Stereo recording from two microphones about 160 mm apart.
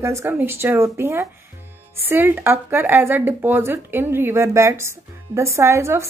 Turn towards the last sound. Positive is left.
turn(degrees=-15)  # may be behind; listen again after turning